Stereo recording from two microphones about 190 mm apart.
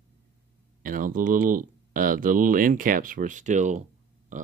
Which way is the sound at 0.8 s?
45° right (ahead or behind).